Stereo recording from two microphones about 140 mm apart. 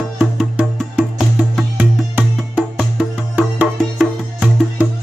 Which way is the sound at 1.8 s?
10° right (ahead or behind).